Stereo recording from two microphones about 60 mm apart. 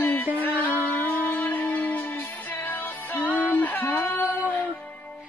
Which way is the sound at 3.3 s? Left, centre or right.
Left.